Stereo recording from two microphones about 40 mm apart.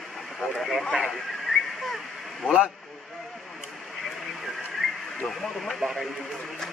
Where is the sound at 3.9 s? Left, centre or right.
Centre.